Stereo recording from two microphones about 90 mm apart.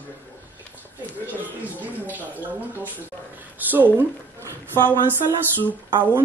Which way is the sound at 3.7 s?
20° right (ahead or behind).